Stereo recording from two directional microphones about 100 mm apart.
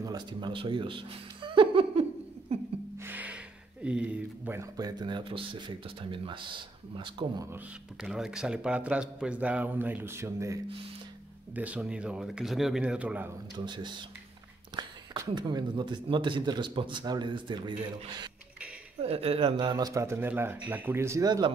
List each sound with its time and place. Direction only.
0.0 s speech: 45° right (ahead or behind); by 2.0 s 65° right (ahead or behind)
2.5 s a sound: 90° right
3.0 s gasp: 20° right (ahead or behind)
3.8 s a man's voice: 10° right (ahead or behind)
4.6 s speech: 40° right (ahead or behind)
8.0 s a man's voice: 5° right (ahead or behind); by 10.6 s 30° right (ahead or behind)
11.5 s a man's voice: 15° right (ahead or behind)
12.8 s a man's voice: 15° right (ahead or behind)
14.8 s speech: 45° right (ahead or behind)
18.9 s speech: 75° right (ahead or behind)
19.5 s speech: 50° right (ahead or behind)
19.9 s speech: 30° right (ahead or behind)
21.2 s speech: 45° right (ahead or behind)